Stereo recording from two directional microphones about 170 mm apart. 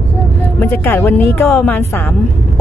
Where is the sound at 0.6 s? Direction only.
15° left (ahead or behind).